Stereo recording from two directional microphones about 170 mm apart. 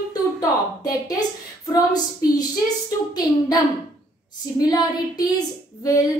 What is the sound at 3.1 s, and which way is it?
Speech, 20° left (ahead or behind).